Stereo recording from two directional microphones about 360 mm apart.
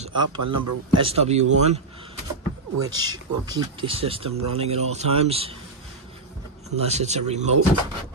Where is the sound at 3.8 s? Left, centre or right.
Centre.